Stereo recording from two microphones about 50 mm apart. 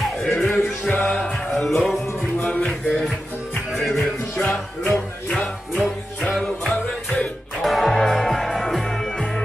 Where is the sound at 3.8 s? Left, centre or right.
Centre.